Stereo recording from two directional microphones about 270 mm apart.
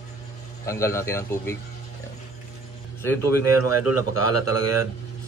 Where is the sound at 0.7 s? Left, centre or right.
Centre.